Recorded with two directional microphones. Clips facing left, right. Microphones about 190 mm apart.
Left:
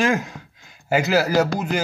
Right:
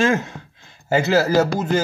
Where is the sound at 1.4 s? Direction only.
15° left (ahead or behind).